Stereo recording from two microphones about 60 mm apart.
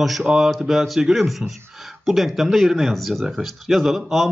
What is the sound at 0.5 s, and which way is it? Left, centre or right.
Speech, centre.